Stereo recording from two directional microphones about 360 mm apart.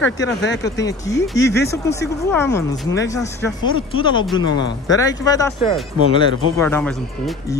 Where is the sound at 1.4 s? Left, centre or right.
Left.